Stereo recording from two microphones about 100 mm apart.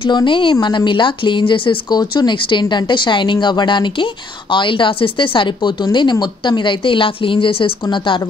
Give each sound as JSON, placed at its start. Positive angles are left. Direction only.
{"t": 0.0, "sound": "a woman's voice", "side_deg": 50}